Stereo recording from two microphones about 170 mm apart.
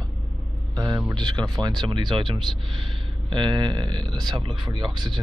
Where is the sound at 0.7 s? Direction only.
25° right (ahead or behind).